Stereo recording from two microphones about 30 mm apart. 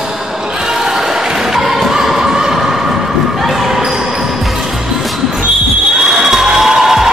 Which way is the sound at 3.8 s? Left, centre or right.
Centre.